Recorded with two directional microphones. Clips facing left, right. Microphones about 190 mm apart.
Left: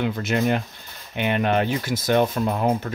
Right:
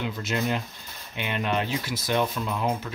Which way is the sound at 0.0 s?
55° left (ahead or behind).